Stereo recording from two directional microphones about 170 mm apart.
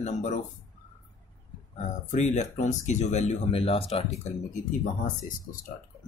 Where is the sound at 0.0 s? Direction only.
45° left (ahead or behind).